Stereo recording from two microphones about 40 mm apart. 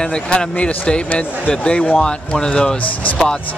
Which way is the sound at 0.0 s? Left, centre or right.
Left.